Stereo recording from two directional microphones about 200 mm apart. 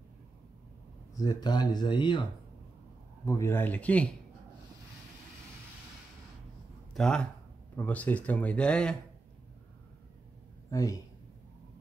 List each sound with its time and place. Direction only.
1.1 s speech: 20° left (ahead or behind)
3.3 s speech: 15° left (ahead or behind)
6.9 s speech: 5° left (ahead or behind)
10.7 s speech: 15° left (ahead or behind)